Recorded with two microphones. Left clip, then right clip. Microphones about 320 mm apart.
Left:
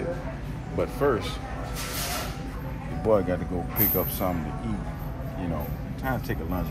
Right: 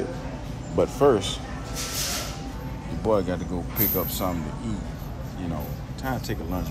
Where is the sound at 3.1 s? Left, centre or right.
Centre.